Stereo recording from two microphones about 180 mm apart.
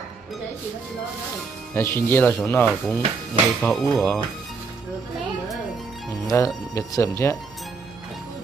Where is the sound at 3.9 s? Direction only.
10° left (ahead or behind).